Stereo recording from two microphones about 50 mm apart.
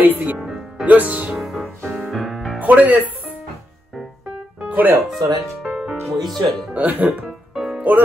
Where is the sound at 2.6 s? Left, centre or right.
Right.